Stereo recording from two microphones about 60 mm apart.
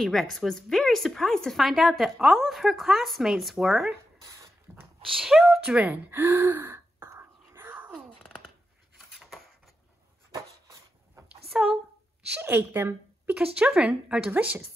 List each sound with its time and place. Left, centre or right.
0.0 s speech: centre
4.7 s a sound: right
5.0 s speech: centre
5.9 s speech: right
6.7 s throat clearing: right
10.3 s a sound: right
11.5 s speech: centre
12.3 s a woman's voice: right
13.4 s a woman's voice: centre